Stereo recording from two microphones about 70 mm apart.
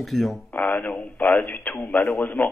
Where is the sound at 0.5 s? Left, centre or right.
Left.